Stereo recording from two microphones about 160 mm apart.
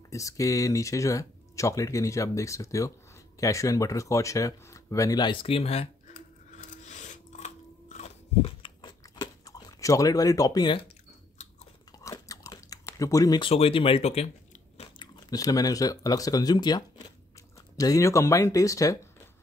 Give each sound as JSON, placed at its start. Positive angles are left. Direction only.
{"t": 0.1, "sound": "speech", "side_deg": 20}
{"t": 6.6, "sound": "chewing", "side_deg": 50}
{"t": 8.6, "sound": "chewing", "side_deg": 25}
{"t": 12.0, "sound": "chewing", "side_deg": 20}
{"t": 13.5, "sound": "speech", "side_deg": 35}
{"t": 14.8, "sound": "speech", "side_deg": 25}